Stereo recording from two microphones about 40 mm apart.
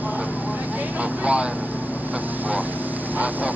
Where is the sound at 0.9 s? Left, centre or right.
Right.